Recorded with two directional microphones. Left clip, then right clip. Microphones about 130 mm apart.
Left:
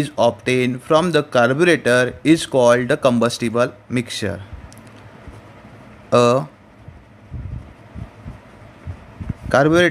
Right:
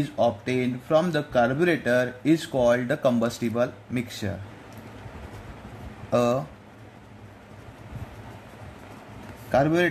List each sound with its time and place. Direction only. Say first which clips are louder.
0.0 s a man's voice: left 7 dB; 55° left (ahead or behind)
6.0 s speech: left 9 dB; 65° left (ahead or behind)
9.5 s speech: left 8 dB; 80° left